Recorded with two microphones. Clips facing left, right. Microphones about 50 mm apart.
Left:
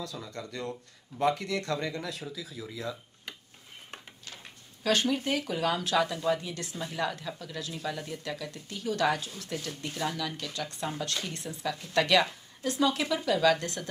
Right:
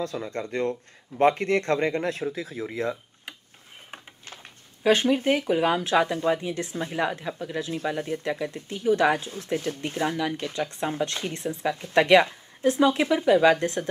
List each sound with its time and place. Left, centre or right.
0.0 s speech: right
4.2 s a sound: right
5.5 s speech: right